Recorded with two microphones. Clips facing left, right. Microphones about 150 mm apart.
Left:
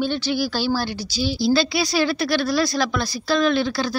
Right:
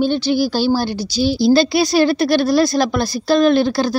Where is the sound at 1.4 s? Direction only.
55° right (ahead or behind).